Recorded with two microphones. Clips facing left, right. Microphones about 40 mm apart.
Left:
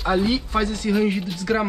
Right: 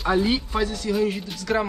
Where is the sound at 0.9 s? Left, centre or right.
Centre.